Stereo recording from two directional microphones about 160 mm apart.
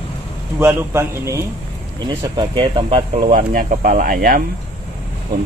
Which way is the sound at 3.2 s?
60° right (ahead or behind).